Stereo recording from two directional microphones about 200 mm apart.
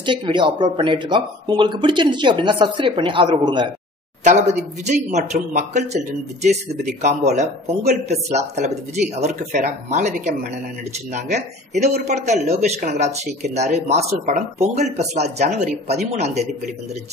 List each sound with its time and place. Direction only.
0.0 s a man's voice: 25° right (ahead or behind)
4.2 s speech: 35° right (ahead or behind)